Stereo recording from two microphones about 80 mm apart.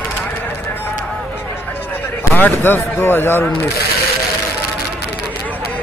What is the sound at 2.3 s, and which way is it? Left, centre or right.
Speech, left.